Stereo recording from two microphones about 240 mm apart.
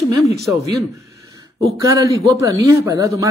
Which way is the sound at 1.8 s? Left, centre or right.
Centre.